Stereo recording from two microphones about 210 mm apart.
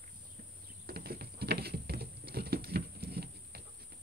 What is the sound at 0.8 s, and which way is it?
Patter, 45° right (ahead or behind).